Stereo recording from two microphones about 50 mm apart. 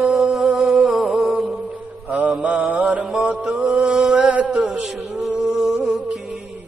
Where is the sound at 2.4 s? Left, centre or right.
Right.